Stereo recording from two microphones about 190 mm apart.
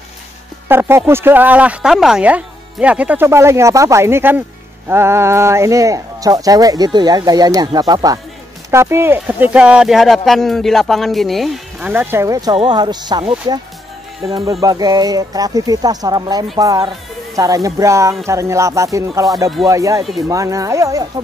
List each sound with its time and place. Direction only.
0.7 s speech: 10° right (ahead or behind)